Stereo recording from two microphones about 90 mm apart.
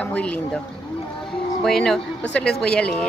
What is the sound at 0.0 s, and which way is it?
Speech, 15° left (ahead or behind).